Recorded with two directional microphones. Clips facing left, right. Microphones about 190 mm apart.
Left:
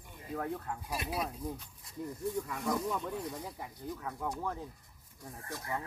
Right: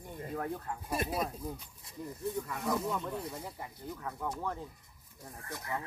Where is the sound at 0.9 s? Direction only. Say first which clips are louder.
Right 5 dB; 50° right (ahead or behind).